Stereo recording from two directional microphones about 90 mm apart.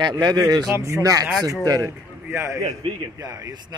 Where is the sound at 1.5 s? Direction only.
40° right (ahead or behind).